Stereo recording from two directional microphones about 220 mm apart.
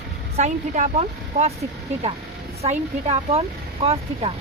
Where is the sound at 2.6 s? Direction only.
30° right (ahead or behind).